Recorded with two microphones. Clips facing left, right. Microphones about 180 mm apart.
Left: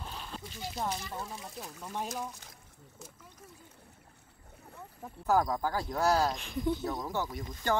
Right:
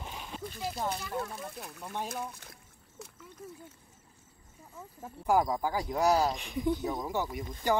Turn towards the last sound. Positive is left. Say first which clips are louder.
# right 2 dB
turn(degrees=-15)  # may be behind; listen again after turning